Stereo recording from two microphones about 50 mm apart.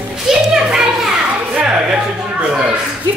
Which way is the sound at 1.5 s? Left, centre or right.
Right.